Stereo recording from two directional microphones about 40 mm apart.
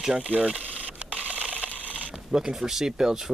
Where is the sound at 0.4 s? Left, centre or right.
Right.